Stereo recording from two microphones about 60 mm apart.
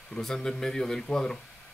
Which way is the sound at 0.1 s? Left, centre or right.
Centre.